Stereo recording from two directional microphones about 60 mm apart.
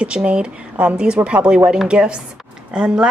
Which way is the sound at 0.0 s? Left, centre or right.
Centre.